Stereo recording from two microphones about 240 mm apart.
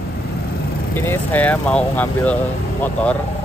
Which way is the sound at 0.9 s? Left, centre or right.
Centre.